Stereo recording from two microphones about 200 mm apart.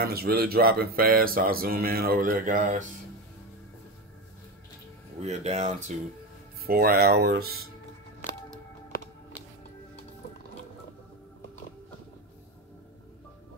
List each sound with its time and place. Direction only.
0.0 s speech: 50° right (ahead or behind)
5.2 s speech: 35° right (ahead or behind)
6.6 s speech: 50° right (ahead or behind)